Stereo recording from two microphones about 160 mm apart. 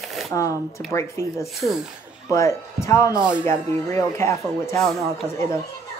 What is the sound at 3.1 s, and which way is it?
Speech, 5° right (ahead or behind).